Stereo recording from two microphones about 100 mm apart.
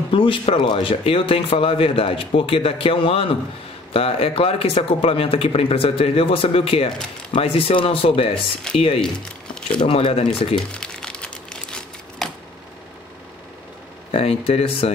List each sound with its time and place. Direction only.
0.1 s a man's voice: 65° left (ahead or behind)
9.0 s speech: 10° left (ahead or behind)
9.8 s a man's voice: 75° left (ahead or behind)
10.5 s crumpling: 10° left (ahead or behind)
14.1 s a man's voice: 75° left (ahead or behind)